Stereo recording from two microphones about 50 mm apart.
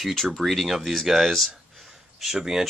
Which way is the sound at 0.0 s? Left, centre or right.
Centre.